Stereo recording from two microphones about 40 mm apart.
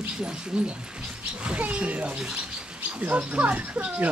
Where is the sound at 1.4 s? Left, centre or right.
Right.